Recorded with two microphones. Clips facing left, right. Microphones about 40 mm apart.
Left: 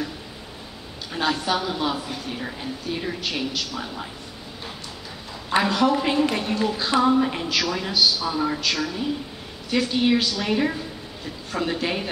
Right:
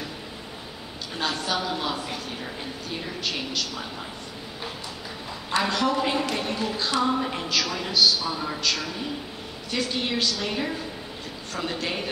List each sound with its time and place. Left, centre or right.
1.1 s speech: centre
5.6 s a woman's voice: centre